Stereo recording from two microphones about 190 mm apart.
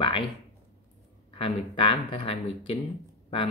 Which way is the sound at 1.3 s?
30° left (ahead or behind).